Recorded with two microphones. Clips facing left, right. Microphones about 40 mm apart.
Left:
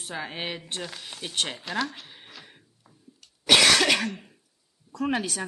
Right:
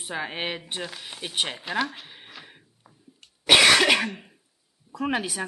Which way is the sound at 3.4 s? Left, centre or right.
Centre.